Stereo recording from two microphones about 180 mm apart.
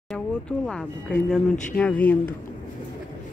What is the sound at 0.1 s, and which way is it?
Speech, 5° left (ahead or behind).